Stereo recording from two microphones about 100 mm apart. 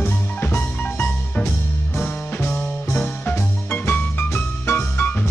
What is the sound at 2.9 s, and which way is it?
Music, 20° left (ahead or behind).